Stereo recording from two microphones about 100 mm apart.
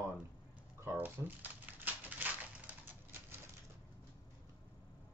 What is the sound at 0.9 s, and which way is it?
Crumpling, 15° right (ahead or behind).